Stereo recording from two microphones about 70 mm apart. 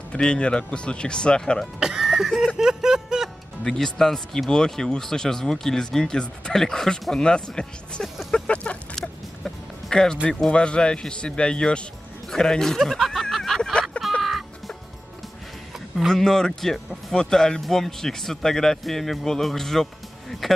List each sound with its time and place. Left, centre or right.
0.1 s speech: centre
1.8 s music: centre
3.6 s speech: centre
8.3 s a sound: centre
9.0 s music: centre
10.4 s speech: centre
12.3 s a sound: centre
14.2 s music: centre
16.1 s speech: centre